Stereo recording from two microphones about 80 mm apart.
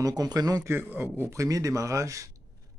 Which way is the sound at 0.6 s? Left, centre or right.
Right.